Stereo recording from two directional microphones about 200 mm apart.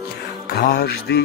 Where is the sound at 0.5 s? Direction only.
50° left (ahead or behind).